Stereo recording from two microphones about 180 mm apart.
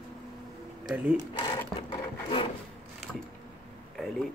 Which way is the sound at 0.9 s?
10° right (ahead or behind).